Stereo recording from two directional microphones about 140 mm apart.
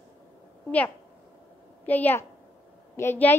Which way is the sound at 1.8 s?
10° left (ahead or behind).